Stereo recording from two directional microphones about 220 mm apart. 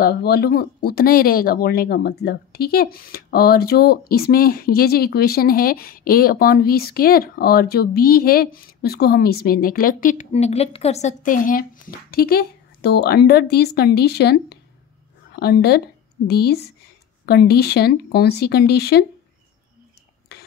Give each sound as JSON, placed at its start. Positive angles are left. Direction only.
{"t": 0.0, "sound": "speech", "side_deg": 45}